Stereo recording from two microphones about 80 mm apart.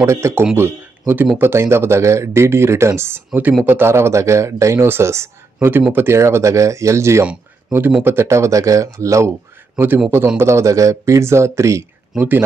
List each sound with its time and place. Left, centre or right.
0.0 s speech: right
9.8 s speech: right
12.2 s speech: right